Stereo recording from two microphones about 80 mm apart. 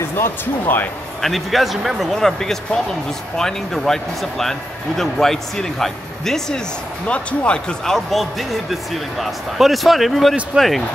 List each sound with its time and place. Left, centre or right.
0.1 s speech: left
1.2 s speech: centre